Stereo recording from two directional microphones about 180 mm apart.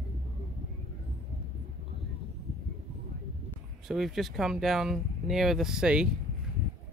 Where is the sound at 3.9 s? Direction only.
Centre (ahead or behind).